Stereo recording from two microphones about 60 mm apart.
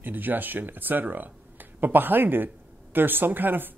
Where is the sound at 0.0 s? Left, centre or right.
Right.